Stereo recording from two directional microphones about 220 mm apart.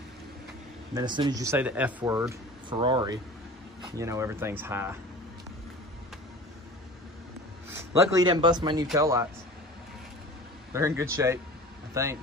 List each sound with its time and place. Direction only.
0.9 s speech: 20° right (ahead or behind)
7.7 s speech: 15° right (ahead or behind)
10.7 s speech: 10° right (ahead or behind)